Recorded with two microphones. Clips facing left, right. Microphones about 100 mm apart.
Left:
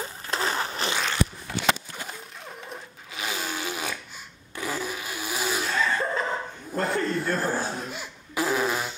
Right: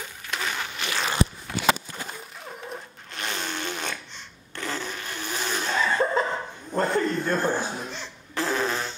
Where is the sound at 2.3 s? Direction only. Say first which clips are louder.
Right 2 dB; centre (ahead or behind).